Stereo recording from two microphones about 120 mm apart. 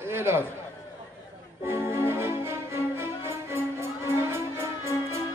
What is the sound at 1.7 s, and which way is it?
Music, 20° right (ahead or behind).